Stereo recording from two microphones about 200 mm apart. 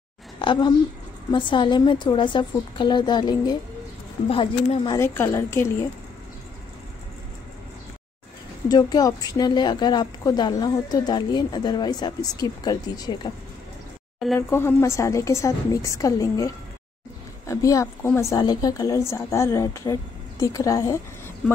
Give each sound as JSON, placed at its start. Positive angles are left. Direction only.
{"t": 0.4, "sound": "a woman's voice", "side_deg": 25}
{"t": 4.9, "sound": "a woman's voice", "side_deg": 10}
{"t": 8.6, "sound": "a woman's voice", "side_deg": 20}
{"t": 14.5, "sound": "a woman's voice", "side_deg": 15}